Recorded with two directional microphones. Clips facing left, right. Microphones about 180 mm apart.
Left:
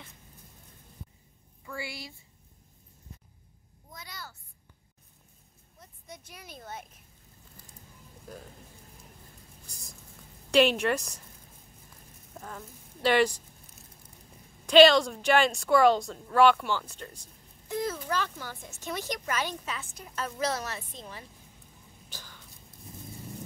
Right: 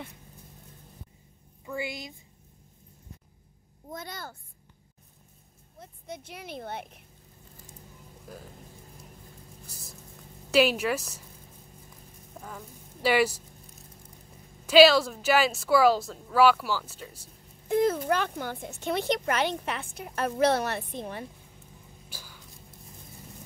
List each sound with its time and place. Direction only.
1.7 s a woman's voice: 20° right (ahead or behind)
3.9 s a child's voice: 50° right (ahead or behind)
5.8 s a woman's voice: 60° right (ahead or behind)
8.3 s a woman's voice: 5° right (ahead or behind)
9.7 s a woman's voice: 5° right (ahead or behind)
12.4 s speech: 5° right (ahead or behind)
14.7 s a woman's voice: 5° right (ahead or behind)
17.6 s a woman's voice: 55° right (ahead or behind)
22.1 s a sound: 10° right (ahead or behind)